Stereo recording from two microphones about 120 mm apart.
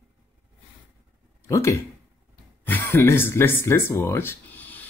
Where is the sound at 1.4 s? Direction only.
25° left (ahead or behind).